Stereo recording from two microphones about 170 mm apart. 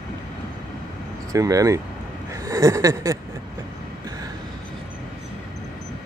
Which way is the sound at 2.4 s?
20° right (ahead or behind).